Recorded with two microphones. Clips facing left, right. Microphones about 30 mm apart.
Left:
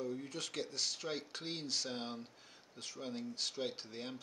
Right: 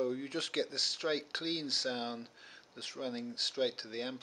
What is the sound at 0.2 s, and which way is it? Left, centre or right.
Speech, right.